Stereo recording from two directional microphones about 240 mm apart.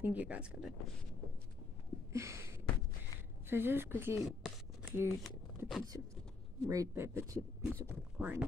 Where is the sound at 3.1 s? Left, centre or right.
Centre.